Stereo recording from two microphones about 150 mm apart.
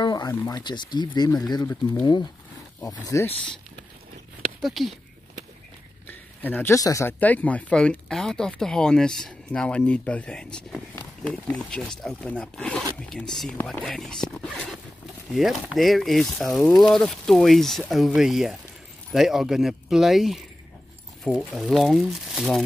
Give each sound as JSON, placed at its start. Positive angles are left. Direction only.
{"t": 0.0, "sound": "a sound", "side_deg": 25}
{"t": 0.3, "sound": "speech", "side_deg": 25}
{"t": 4.6, "sound": "speech", "side_deg": 0}
{"t": 6.0, "sound": "speech", "side_deg": 10}